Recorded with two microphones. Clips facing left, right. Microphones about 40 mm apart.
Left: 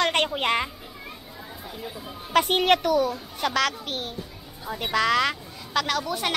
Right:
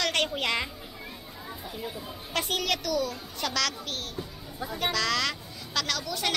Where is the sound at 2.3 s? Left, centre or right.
Left.